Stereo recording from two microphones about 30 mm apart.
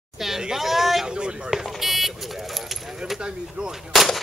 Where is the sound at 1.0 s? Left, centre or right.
Right.